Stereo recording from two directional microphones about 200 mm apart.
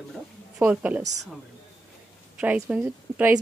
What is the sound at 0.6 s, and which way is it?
Speech, 10° right (ahead or behind).